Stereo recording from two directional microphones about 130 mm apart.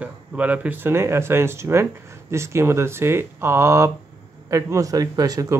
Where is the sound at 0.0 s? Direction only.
10° right (ahead or behind).